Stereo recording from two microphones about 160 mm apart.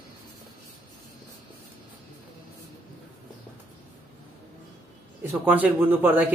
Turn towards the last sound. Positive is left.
turn(degrees=-10)  # may be behind; listen again after turning